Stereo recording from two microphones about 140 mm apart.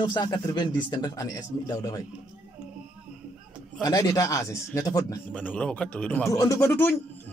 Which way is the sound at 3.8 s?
25° left (ahead or behind).